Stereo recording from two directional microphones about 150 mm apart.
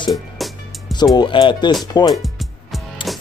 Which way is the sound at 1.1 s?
35° left (ahead or behind).